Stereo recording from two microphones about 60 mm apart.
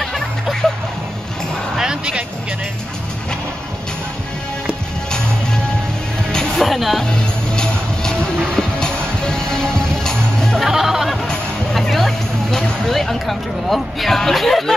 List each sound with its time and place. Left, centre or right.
0.0 s music: centre
1.8 s music: centre
6.6 s music: centre
7.1 s music: centre
10.7 s music: centre
11.2 s music: centre